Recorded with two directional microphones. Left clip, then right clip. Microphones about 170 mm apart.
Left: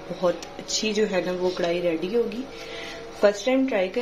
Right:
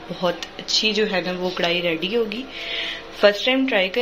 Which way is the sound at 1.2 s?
Centre (ahead or behind).